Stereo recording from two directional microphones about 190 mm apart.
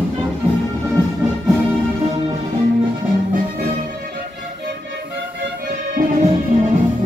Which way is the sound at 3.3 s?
50° right (ahead or behind).